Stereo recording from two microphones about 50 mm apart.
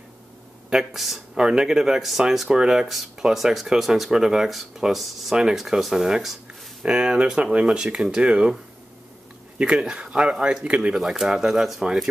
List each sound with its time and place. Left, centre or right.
0.7 s speech: centre
1.3 s speech: centre
9.6 s speech: centre
11.0 s speech: centre